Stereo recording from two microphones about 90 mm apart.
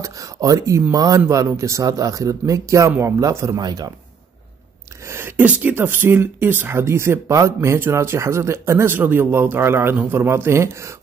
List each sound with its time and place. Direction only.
0.0 s speech: 40° right (ahead or behind)
5.0 s speech: 25° right (ahead or behind)